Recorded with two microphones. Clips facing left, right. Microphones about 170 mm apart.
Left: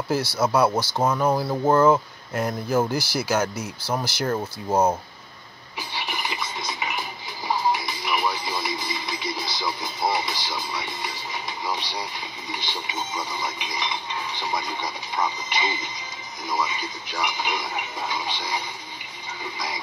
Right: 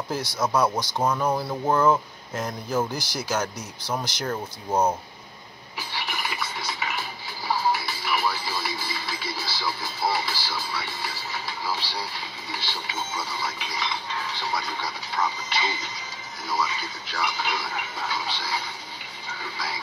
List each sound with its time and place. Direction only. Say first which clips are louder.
0.1 s speech: left 4 dB; 5° left (ahead or behind)
5.8 s music: left 1 dB; 15° left (ahead or behind)
8.8 s a sound: left 3 dB; 15° left (ahead or behind)
10.0 s speech: left 1 dB; 15° left (ahead or behind)